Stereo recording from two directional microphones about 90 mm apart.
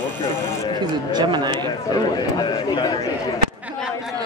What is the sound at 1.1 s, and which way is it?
Speech, 50° right (ahead or behind).